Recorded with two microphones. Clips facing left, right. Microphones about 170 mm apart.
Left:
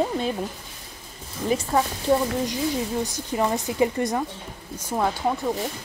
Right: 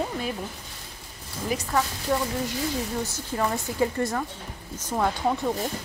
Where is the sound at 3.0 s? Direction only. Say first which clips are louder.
Left 3 dB; 15° left (ahead or behind).